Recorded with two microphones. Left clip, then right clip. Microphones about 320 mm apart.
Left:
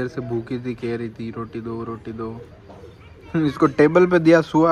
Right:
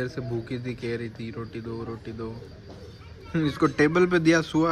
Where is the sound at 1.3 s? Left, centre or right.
Left.